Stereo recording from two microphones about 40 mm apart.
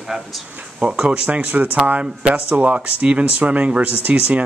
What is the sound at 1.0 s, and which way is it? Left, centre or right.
Speech, right.